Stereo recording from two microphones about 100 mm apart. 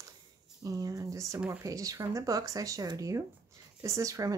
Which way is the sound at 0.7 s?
35° right (ahead or behind).